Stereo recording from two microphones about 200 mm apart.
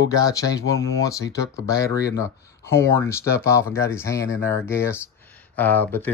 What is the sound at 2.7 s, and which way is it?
Speech, 10° left (ahead or behind).